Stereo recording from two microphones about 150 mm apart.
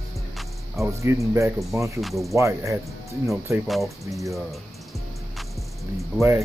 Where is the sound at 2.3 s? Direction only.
20° right (ahead or behind).